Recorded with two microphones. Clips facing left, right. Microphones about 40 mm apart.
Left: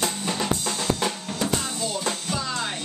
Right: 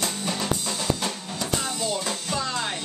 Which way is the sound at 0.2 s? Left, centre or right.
Centre.